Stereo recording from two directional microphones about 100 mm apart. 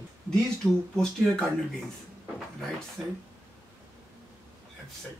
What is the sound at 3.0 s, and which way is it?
Speech, 5° right (ahead or behind).